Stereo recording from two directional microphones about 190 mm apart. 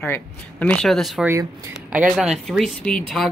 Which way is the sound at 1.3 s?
15° right (ahead or behind).